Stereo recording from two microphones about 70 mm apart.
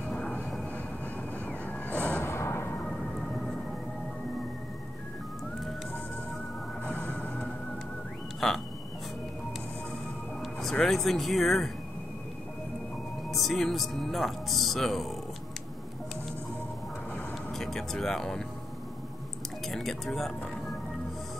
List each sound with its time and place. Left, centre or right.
0.0 s music: centre
1.9 s music: centre
2.2 s music: left
2.9 s music: centre
6.8 s music: centre
8.4 s frog: centre
10.4 s a sound: centre
10.9 s speech: centre
13.3 s speech: centre
17.5 s speech: centre
19.7 s speech: centre